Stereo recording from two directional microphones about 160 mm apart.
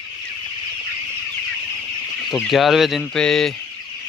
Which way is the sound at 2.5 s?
Centre (ahead or behind).